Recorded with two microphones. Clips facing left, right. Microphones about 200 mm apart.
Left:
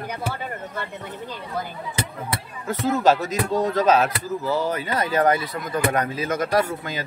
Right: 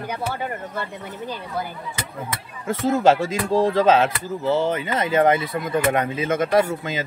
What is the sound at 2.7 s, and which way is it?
Speech, 30° right (ahead or behind).